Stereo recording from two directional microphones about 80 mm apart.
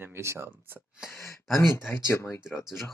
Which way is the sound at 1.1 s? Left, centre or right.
Left.